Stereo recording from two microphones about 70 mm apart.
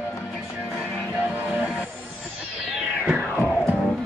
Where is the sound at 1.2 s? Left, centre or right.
Right.